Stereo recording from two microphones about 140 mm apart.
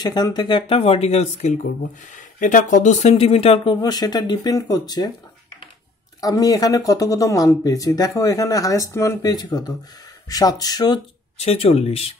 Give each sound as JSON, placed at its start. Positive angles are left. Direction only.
{"t": 0.0, "sound": "speech", "side_deg": 30}
{"t": 2.4, "sound": "speech", "side_deg": 65}
{"t": 3.7, "sound": "speech", "side_deg": 30}
{"t": 6.2, "sound": "speech", "side_deg": 25}
{"t": 11.3, "sound": "speech", "side_deg": 45}